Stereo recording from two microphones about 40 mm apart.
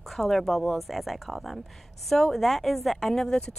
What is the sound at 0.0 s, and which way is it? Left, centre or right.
A woman's voice, centre.